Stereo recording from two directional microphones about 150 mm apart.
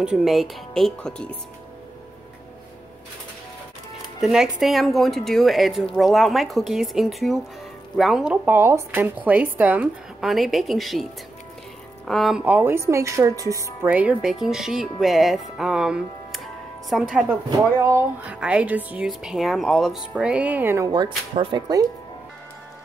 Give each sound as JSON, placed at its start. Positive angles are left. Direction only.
{"t": 0.0, "sound": "speech", "side_deg": -5}
{"t": 4.2, "sound": "speech", "side_deg": -5}
{"t": 12.1, "sound": "speech", "side_deg": 0}
{"t": 13.8, "sound": "speech", "side_deg": -10}
{"t": 17.5, "sound": "speech", "side_deg": -20}
{"t": 18.2, "sound": "speech", "side_deg": -10}